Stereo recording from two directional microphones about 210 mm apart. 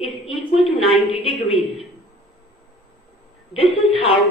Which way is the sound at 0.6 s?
25° left (ahead or behind).